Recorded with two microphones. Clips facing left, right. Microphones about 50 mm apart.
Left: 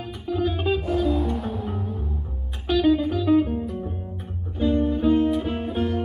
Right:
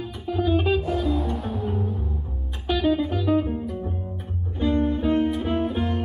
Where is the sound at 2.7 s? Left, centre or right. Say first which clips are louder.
Left 2 dB; right.